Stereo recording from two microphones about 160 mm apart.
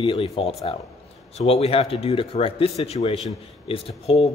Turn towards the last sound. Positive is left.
turn(degrees=40)  # may be behind; listen again after turning